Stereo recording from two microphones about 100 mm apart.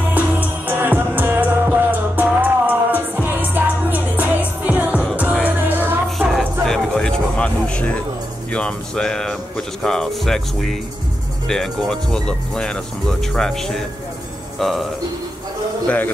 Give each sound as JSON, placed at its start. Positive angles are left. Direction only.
{"t": 0.1, "sound": "music", "side_deg": -15}
{"t": 6.0, "sound": "music", "side_deg": 0}
{"t": 6.6, "sound": "a sound", "side_deg": 5}
{"t": 8.5, "sound": "speech", "side_deg": 10}